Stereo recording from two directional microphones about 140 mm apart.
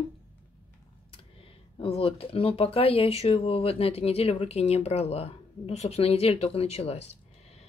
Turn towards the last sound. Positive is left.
turn(degrees=45)  # may be behind; listen again after turning